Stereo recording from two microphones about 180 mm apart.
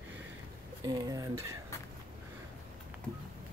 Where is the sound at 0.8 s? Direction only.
20° right (ahead or behind).